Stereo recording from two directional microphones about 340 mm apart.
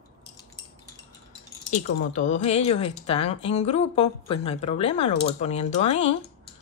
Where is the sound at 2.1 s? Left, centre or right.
Left.